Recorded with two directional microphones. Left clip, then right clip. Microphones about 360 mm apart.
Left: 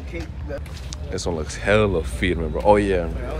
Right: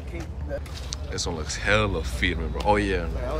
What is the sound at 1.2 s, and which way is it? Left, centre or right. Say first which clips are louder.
Speech: left 4 dB; centre.